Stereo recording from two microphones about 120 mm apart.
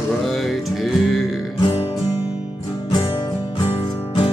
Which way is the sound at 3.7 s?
50° left (ahead or behind).